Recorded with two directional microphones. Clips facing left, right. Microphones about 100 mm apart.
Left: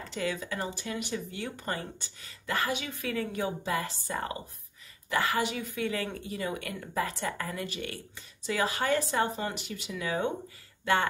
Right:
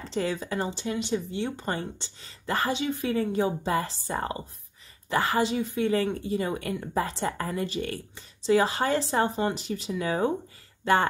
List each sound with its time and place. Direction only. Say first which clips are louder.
0.0 s speech: right 4 dB; 30° right (ahead or behind)